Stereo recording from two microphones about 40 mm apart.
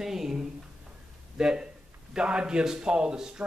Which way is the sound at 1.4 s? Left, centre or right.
Centre.